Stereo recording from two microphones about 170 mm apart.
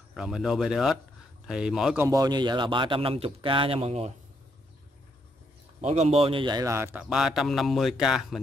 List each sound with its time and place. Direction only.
0.1 s speech: 5° right (ahead or behind)
2.0 s speech: 20° right (ahead or behind)
5.8 s a man's voice: 40° right (ahead or behind); by 8.4 s 5° right (ahead or behind)